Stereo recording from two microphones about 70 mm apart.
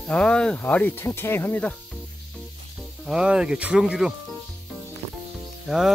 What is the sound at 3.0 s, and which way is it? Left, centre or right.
Speech, centre.